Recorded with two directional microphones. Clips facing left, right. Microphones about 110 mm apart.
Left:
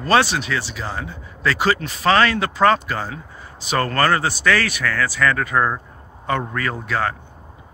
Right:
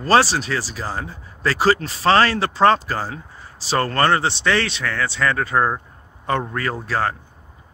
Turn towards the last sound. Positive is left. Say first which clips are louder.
# even
turn(degrees=-30)  # may be behind; listen again after turning